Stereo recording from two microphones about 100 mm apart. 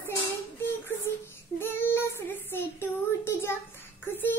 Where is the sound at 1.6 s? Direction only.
25° left (ahead or behind).